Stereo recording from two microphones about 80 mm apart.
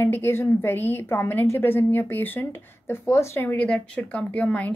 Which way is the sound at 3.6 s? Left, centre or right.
Centre.